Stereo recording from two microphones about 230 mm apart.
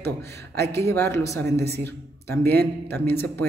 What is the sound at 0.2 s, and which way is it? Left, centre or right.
Speech, right.